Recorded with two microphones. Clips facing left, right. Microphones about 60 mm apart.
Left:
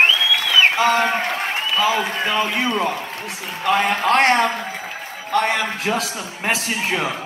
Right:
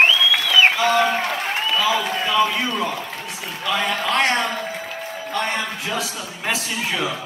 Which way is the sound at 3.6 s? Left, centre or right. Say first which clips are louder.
Left 4 dB; left.